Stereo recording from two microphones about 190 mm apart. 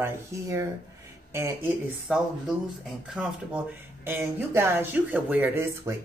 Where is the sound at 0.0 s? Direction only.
15° right (ahead or behind).